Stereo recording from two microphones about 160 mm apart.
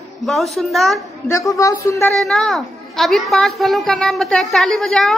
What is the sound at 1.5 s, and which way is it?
Speech, 20° left (ahead or behind).